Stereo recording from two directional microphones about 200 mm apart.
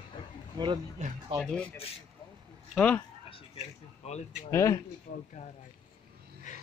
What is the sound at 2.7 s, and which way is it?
Speech, 5° left (ahead or behind).